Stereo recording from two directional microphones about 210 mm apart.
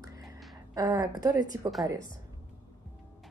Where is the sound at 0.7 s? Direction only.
15° right (ahead or behind).